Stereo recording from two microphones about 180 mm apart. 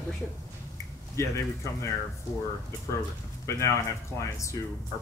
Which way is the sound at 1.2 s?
15° left (ahead or behind).